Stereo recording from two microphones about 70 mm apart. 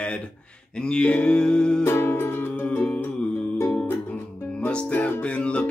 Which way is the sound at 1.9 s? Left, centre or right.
Left.